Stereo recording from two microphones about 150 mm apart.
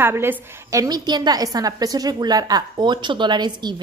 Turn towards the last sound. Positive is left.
turn(degrees=-30)  # may be behind; listen again after turning